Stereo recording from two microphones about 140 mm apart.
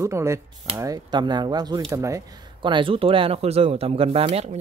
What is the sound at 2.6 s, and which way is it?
Speech, 35° right (ahead or behind).